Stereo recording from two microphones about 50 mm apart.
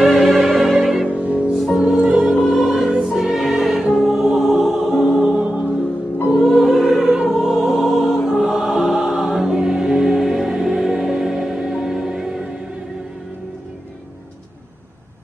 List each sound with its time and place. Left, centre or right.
0.0 s music: centre
1.0 s music: right
1.5 s music: centre
5.2 s music: centre
6.3 s music: centre
8.4 s choir: centre